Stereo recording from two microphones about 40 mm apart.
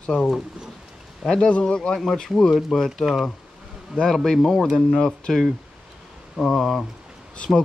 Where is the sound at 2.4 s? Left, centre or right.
Centre.